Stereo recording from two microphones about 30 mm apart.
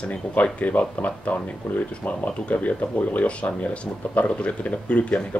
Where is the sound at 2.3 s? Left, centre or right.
Left.